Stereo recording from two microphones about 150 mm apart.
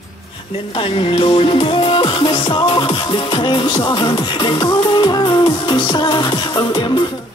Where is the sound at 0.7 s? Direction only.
35° left (ahead or behind).